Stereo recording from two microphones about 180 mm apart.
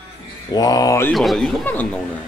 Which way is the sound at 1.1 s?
Centre (ahead or behind).